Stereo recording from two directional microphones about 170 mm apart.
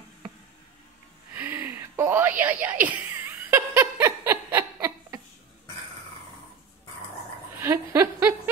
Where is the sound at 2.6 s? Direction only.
10° right (ahead or behind).